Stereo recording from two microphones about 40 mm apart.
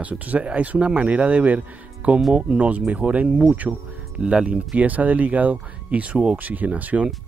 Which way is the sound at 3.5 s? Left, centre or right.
Right.